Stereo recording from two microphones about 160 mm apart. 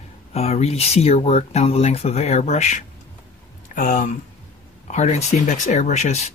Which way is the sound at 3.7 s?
60° left (ahead or behind).